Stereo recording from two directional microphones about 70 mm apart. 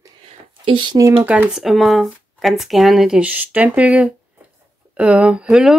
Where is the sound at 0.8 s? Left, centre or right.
Right.